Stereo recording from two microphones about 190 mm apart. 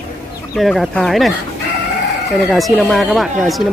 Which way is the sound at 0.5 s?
Centre (ahead or behind).